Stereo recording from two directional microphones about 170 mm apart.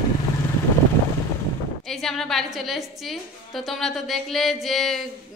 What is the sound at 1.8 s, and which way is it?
A woman's voice, centre (ahead or behind).